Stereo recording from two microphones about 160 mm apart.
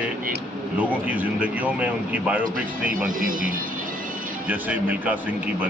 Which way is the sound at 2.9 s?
60° right (ahead or behind).